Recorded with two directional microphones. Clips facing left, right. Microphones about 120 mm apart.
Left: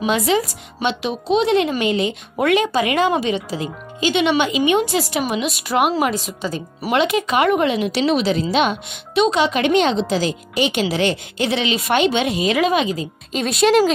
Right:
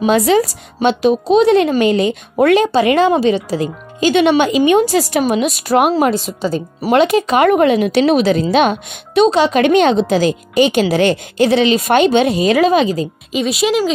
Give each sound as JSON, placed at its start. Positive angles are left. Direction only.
{"t": 0.0, "sound": "a woman's voice", "side_deg": -40}
{"t": 13.3, "sound": "speech", "side_deg": -5}